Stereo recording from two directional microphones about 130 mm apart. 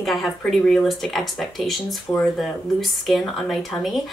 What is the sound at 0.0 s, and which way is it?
Speech, centre (ahead or behind).